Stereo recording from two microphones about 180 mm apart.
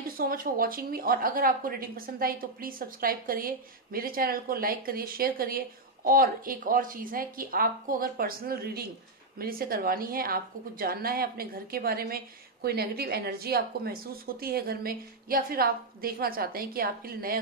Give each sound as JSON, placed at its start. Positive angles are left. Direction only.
{"t": 0.2, "sound": "a woman's voice", "side_deg": -55}